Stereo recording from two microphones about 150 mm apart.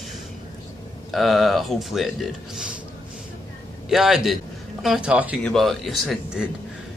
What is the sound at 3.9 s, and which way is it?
A man's voice, 5° right (ahead or behind).